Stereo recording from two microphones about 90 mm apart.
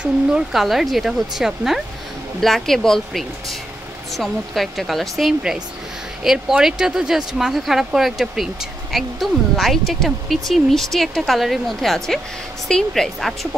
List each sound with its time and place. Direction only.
0.0 s speech: 5° right (ahead or behind)